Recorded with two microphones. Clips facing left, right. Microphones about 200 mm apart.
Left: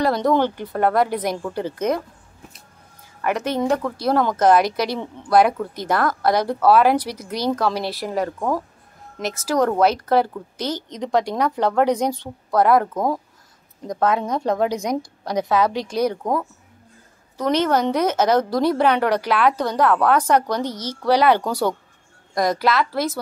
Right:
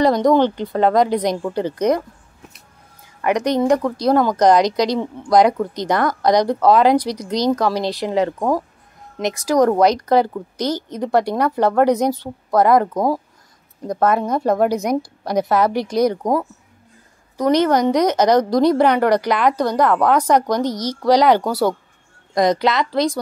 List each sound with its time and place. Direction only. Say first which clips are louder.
0.0 s a woman's voice: right 4 dB; 15° right (ahead or behind)
3.3 s a woman's voice: right 4 dB; 15° right (ahead or behind)
22.3 s a woman's voice: right 3 dB; 20° right (ahead or behind)